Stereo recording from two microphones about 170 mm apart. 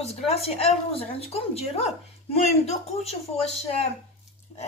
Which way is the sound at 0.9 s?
35° left (ahead or behind).